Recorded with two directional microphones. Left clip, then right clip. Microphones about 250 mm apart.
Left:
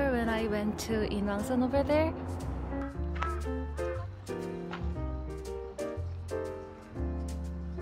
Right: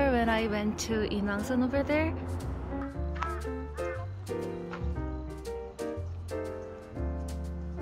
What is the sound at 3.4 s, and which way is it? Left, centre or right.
Music, centre.